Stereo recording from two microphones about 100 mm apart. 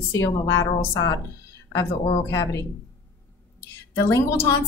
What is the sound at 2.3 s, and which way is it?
Speech, 30° left (ahead or behind).